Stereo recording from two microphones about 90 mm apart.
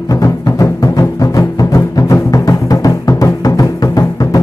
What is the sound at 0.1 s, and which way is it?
Music, 40° left (ahead or behind).